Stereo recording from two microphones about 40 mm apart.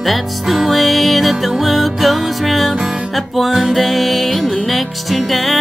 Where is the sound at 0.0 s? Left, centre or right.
Centre.